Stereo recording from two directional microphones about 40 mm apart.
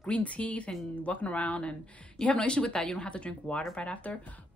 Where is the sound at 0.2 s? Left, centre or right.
Left.